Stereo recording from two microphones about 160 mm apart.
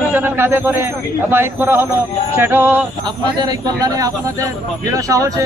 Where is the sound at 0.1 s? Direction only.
15° right (ahead or behind).